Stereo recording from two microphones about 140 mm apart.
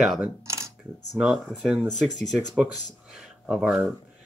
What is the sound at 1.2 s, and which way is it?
Speech, 5° right (ahead or behind).